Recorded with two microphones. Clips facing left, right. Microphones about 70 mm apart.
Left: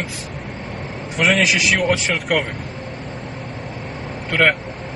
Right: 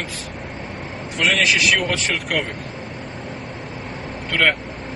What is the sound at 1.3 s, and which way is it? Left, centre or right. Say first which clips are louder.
Speech: left 1 dB; left.